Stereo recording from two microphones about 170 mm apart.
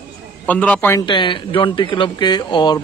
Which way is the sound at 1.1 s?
30° left (ahead or behind).